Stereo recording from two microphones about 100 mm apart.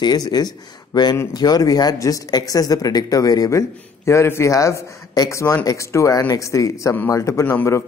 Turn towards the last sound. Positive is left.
turn(degrees=25)  # may be behind; listen again after turning